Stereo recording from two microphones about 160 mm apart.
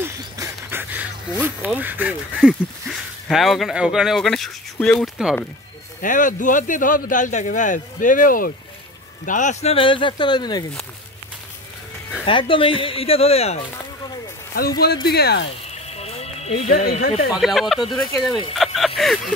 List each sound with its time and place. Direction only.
0.0 s speech: 15° right (ahead or behind); by 5.4 s centre (ahead or behind)
5.9 s speech: 55° left (ahead or behind); by 10.6 s 25° left (ahead or behind)
12.3 s speech: 30° left (ahead or behind)
15.0 s speech: 85° left
15.9 s music: 40° left (ahead or behind)
17.3 s speech: centre (ahead or behind)